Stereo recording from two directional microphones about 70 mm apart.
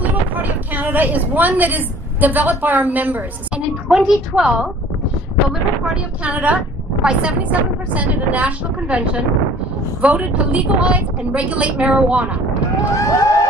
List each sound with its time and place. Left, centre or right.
0.0 s speech: right
3.9 s a woman's voice: centre
6.2 s a woman's voice: centre
12.9 s a sound: left